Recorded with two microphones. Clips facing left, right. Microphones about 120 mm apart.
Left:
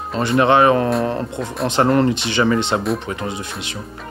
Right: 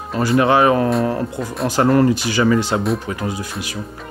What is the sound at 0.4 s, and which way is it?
Speech, 25° left (ahead or behind).